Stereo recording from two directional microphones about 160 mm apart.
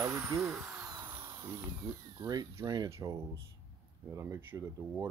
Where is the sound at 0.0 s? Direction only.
20° right (ahead or behind).